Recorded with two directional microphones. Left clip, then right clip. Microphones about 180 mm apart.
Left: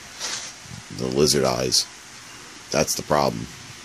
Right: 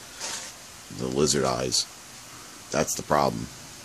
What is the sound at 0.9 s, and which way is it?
Speech, 25° left (ahead or behind).